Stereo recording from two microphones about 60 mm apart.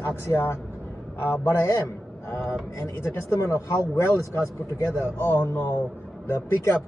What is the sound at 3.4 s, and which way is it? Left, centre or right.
Speech, left.